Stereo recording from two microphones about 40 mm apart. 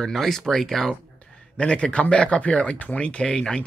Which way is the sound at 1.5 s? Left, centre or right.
Left.